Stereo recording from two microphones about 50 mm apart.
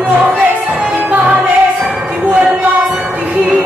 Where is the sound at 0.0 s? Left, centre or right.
Right.